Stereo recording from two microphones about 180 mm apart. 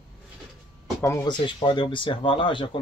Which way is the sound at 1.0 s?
20° left (ahead or behind).